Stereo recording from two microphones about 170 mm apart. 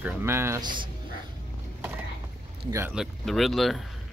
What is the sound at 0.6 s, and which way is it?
Speech, 25° right (ahead or behind).